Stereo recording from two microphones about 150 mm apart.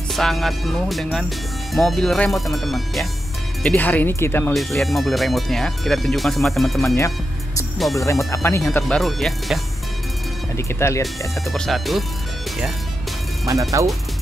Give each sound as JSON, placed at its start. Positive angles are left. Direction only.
{"t": 0.1, "sound": "speech", "side_deg": 0}
{"t": 3.6, "sound": "speech", "side_deg": 10}
{"t": 4.6, "sound": "speech", "side_deg": 0}
{"t": 8.3, "sound": "speech", "side_deg": 20}
{"t": 8.8, "sound": "speech", "side_deg": 0}
{"t": 10.7, "sound": "speech", "side_deg": 20}
{"t": 11.4, "sound": "speech", "side_deg": 0}
{"t": 13.5, "sound": "speech", "side_deg": -20}